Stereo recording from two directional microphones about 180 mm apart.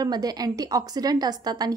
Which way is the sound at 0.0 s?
20° right (ahead or behind).